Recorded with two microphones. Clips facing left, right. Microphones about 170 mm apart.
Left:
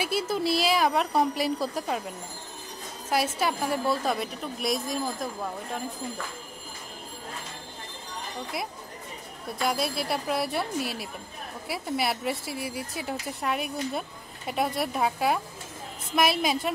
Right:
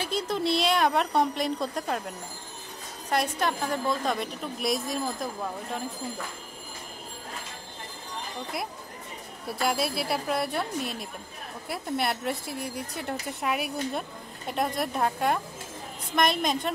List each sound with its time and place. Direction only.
0.0 s speech: 5° left (ahead or behind)
9.6 s speech: centre (ahead or behind)